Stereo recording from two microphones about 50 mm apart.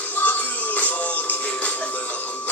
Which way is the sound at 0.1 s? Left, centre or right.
Left.